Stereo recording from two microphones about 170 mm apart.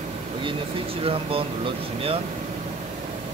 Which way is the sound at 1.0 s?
35° right (ahead or behind).